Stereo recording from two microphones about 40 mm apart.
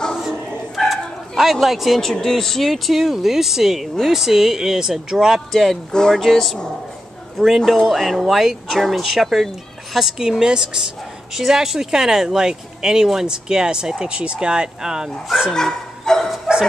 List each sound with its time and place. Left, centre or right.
0.7 s bow-wow: centre
2.0 s speech: centre
3.0 s speech: centre
5.6 s speech: centre
10.2 s speech: centre
15.5 s speech: centre
16.5 s dog: centre